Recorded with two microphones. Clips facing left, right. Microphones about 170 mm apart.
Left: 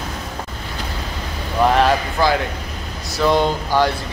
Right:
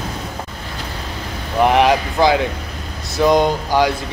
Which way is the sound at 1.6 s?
15° right (ahead or behind).